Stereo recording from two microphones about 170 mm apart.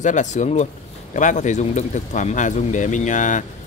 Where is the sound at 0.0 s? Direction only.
45° left (ahead or behind).